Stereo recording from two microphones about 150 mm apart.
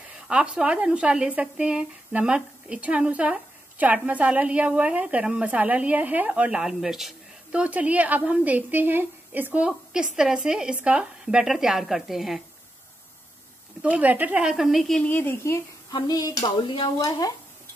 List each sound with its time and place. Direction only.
0.3 s a woman's voice: 5° right (ahead or behind)
13.8 s a woman's voice: 10° right (ahead or behind); by 17.3 s 25° left (ahead or behind)